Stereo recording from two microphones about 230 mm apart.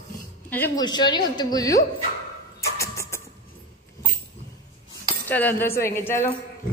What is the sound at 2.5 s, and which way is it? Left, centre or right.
Vehicle, centre.